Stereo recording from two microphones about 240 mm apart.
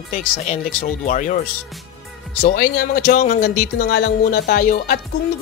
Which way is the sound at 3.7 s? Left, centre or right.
Left.